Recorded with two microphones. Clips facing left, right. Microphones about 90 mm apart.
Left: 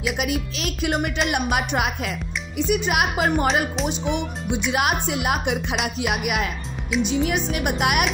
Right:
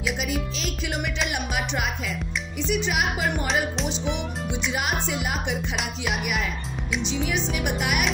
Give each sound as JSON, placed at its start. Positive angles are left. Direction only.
{"t": 0.2, "sound": "speech", "side_deg": 60}
{"t": 0.9, "sound": "music", "side_deg": 50}
{"t": 1.3, "sound": "speech", "side_deg": 60}